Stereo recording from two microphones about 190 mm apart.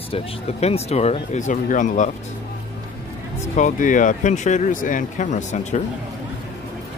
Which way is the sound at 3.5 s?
40° left (ahead or behind).